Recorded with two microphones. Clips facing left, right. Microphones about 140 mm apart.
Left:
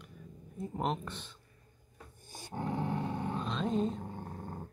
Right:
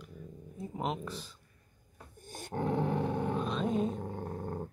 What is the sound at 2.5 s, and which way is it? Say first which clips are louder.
Dog: right 4 dB; 60° right (ahead or behind).